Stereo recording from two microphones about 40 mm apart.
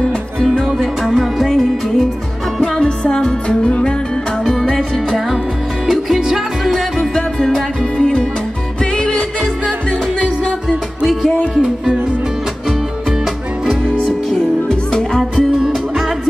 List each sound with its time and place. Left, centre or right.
0.7 s music: centre
2.8 s music: centre
4.6 s music: centre
5.9 s music: centre
7.2 s music: centre
11.5 s music: centre
13.8 s music: centre